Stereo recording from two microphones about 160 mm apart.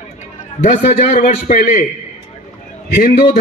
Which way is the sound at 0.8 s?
50° left (ahead or behind).